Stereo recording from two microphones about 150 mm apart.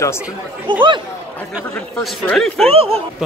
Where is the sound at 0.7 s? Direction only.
35° right (ahead or behind).